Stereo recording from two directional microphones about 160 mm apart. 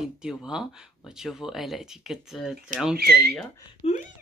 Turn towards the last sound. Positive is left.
turn(degrees=40)  # may be behind; listen again after turning